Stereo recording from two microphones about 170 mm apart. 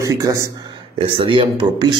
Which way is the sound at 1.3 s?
30° right (ahead or behind).